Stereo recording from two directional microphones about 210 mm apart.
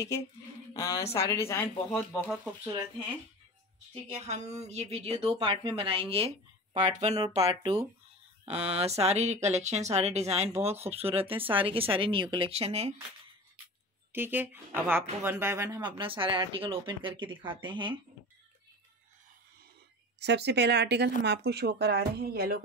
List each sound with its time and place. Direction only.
0.7 s speech: 15° left (ahead or behind)
3.9 s speech: 30° right (ahead or behind)
14.1 s speech: 10° right (ahead or behind)
20.2 s speech: 55° right (ahead or behind)